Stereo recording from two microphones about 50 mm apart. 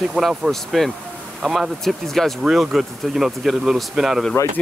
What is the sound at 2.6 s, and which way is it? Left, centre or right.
Speech, centre.